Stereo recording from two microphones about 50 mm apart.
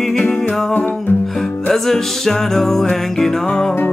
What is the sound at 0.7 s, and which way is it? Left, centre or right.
Music, left.